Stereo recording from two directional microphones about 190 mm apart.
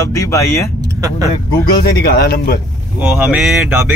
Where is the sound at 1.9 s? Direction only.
55° left (ahead or behind).